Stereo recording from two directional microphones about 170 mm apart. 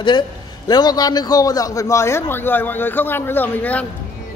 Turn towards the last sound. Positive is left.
turn(degrees=10)  # may be behind; listen again after turning